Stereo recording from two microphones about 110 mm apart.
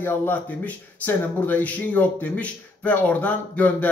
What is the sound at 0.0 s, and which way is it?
Speech, 15° left (ahead or behind).